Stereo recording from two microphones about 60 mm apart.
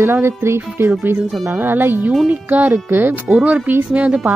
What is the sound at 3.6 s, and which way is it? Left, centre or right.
Speech, right.